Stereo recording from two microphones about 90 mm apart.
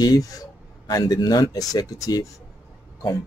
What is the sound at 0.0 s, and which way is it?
Speech, 45° left (ahead or behind).